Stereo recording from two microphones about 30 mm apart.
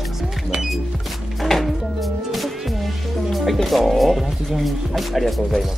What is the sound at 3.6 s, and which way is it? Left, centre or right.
Speech, centre.